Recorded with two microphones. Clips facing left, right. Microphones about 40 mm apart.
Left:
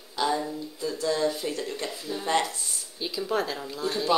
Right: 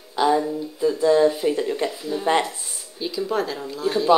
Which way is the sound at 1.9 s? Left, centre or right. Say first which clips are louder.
Right 6 dB; centre.